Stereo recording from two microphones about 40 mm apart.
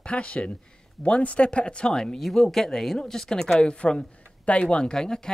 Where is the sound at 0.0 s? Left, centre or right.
Left.